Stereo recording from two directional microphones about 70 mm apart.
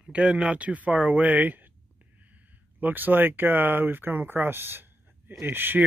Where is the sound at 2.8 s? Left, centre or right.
Right.